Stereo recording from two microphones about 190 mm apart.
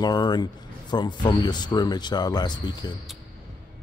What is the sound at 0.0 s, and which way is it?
Speech, 20° left (ahead or behind).